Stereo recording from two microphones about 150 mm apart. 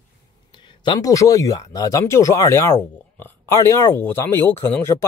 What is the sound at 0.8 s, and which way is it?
Speech, 25° left (ahead or behind).